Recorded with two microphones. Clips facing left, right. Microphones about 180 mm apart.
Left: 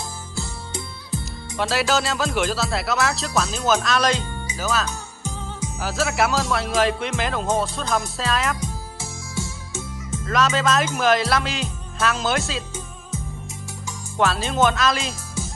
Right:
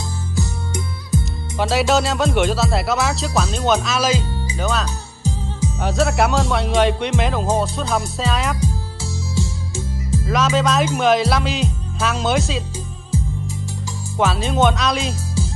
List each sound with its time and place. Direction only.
0.4 s music: 20° right (ahead or behind)
1.6 s speech: centre (ahead or behind)
8.5 s music: 30° right (ahead or behind)
10.2 s speech: centre (ahead or behind)
14.1 s speech: centre (ahead or behind)